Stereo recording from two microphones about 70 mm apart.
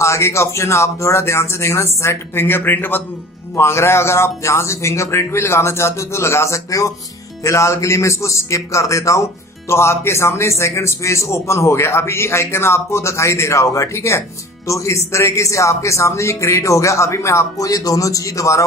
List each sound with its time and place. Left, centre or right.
0.0 s a man's voice: left